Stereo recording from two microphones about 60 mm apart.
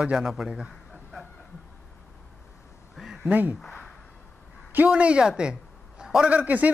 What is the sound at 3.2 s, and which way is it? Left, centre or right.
Speech, right.